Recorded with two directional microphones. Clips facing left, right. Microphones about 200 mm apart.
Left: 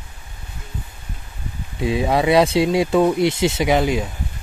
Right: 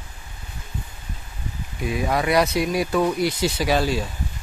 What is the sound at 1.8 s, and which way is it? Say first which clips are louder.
Speech: left 5 dB; 25° left (ahead or behind).